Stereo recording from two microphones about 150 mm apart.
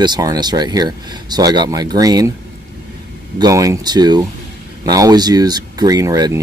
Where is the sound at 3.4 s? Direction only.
20° right (ahead or behind).